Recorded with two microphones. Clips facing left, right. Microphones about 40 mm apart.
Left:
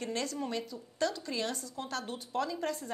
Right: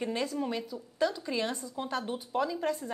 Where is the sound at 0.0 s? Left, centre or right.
Centre.